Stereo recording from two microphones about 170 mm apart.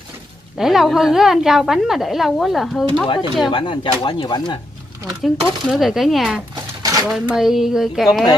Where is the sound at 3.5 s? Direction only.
30° left (ahead or behind).